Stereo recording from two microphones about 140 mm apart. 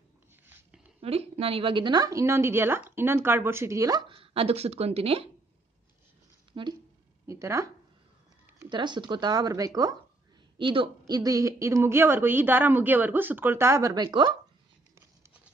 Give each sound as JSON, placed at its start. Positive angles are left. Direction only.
{"t": 1.0, "sound": "a woman's voice", "side_deg": -45}
{"t": 4.1, "sound": "speech", "side_deg": -40}
{"t": 6.5, "sound": "a woman's voice", "side_deg": -35}
{"t": 7.2, "sound": "speech", "side_deg": -20}
{"t": 8.5, "sound": "a woman's voice", "side_deg": -35}
{"t": 10.6, "sound": "speech", "side_deg": -35}
{"t": 15.0, "sound": "a sound", "side_deg": -20}